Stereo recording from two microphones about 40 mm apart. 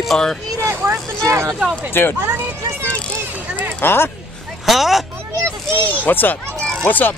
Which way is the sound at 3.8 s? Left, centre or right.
Left.